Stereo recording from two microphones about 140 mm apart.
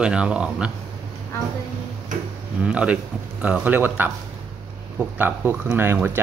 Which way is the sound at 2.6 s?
10° right (ahead or behind).